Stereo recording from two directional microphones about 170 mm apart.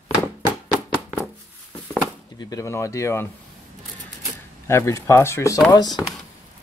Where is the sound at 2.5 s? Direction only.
20° left (ahead or behind).